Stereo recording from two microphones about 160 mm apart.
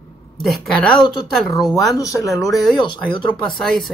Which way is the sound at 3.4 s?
Centre (ahead or behind).